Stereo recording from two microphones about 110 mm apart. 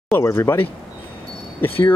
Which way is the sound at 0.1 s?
25° left (ahead or behind).